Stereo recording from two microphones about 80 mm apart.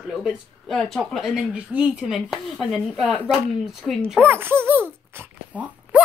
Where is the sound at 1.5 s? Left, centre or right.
Centre.